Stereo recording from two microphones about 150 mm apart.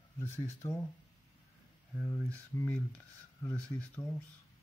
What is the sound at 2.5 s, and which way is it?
Speech, 15° left (ahead or behind).